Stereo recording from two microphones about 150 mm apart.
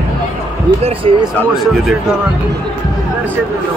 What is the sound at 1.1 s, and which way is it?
Speech, 45° right (ahead or behind).